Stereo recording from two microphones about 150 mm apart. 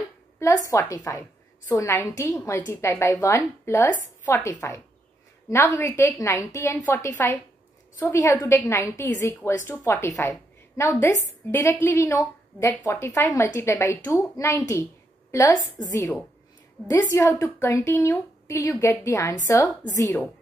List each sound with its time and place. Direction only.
0.4 s a woman's voice: 25° left (ahead or behind)